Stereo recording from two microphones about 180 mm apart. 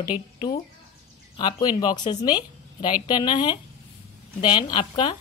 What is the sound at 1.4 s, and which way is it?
A woman's voice, 20° left (ahead or behind).